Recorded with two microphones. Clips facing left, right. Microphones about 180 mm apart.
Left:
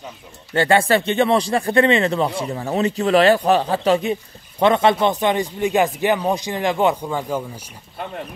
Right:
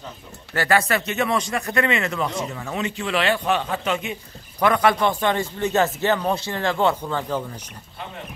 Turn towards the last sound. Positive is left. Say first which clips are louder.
# left 2 dB
turn(degrees=10)  # may be behind; listen again after turning